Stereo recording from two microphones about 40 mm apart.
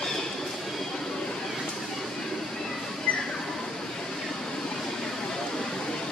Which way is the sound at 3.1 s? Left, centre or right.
Left.